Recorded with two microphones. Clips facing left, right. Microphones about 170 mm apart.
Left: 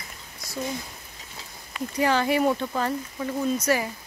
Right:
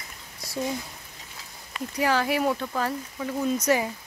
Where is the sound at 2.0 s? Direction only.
5° right (ahead or behind).